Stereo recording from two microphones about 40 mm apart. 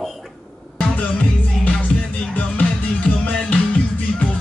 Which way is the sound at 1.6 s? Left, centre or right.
Left.